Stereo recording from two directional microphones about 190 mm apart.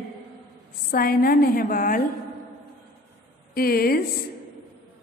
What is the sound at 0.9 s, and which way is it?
A woman's voice, 50° left (ahead or behind).